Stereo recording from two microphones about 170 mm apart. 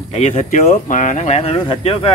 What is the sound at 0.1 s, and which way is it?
Speech, 40° left (ahead or behind).